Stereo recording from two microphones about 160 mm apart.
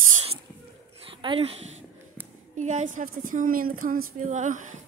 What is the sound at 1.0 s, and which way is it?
Speech, 35° right (ahead or behind).